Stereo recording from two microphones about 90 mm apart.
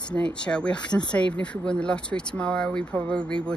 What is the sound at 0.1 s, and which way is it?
A woman's voice, 10° left (ahead or behind).